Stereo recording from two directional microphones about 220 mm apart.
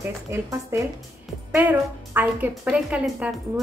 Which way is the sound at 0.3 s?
15° right (ahead or behind).